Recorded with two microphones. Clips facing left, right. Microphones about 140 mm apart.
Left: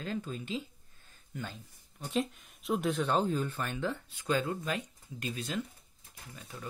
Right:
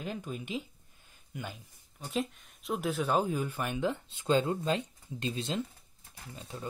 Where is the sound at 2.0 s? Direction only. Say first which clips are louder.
Left 1 dB; centre (ahead or behind).